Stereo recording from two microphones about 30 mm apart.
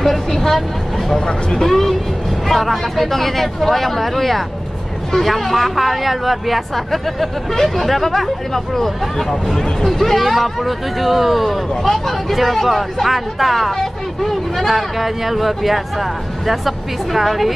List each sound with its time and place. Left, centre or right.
0.3 s speech: centre
1.2 s speech: centre
1.7 s speech: centre
6.7 s speech: centre
11.7 s speech: centre
12.3 s speech: centre
14.7 s speech: centre